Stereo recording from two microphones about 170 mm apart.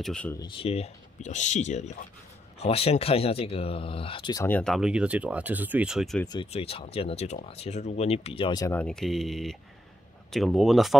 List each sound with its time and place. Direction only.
0.0 s speech: 5° left (ahead or behind)
0.4 s speech: 30° left (ahead or behind)
4.5 s speech: 10° left (ahead or behind)
4.7 s speech: 5° right (ahead or behind)
6.2 s speech: 25° left (ahead or behind)
8.6 s speech: 5° left (ahead or behind)